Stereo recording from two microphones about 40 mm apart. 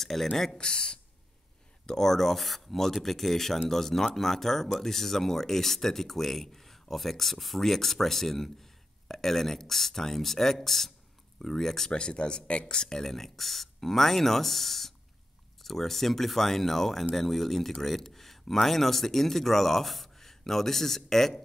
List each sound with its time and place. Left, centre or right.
0.0 s speech: centre
0.6 s speech: centre
11.9 s speech: left